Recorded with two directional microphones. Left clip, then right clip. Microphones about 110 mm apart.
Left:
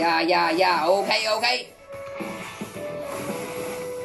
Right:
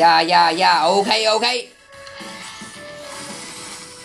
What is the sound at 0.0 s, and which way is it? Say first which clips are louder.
Speech: right 8 dB; 30° right (ahead or behind).